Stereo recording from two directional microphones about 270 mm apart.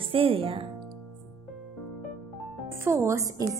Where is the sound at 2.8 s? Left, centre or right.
Centre.